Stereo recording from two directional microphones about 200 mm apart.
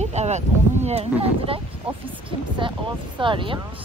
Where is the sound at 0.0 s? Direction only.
35° right (ahead or behind).